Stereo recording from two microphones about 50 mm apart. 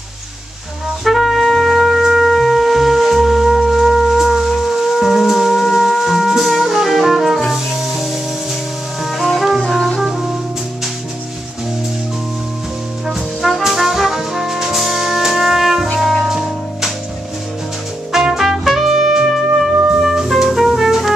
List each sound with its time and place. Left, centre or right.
1.0 s music: centre
9.6 s music: centre
9.9 s brass instrument: centre
13.0 s brass instrument: centre
16.0 s music: centre
18.1 s music: centre